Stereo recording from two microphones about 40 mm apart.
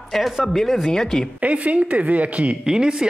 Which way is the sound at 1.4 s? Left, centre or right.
Right.